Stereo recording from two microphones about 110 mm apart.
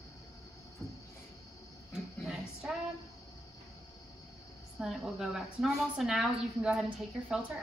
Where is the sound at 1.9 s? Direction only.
5° right (ahead or behind).